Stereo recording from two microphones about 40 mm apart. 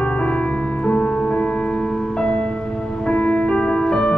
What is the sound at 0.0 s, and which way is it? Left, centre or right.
Music, left.